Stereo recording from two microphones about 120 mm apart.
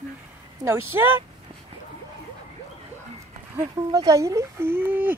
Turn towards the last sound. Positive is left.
turn(degrees=-15)  # may be behind; listen again after turning